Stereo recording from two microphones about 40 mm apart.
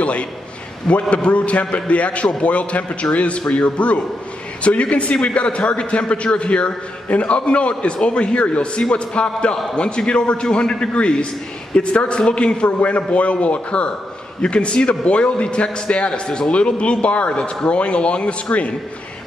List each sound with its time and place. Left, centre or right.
0.0 s a man's voice: left
12.6 s a man's voice: left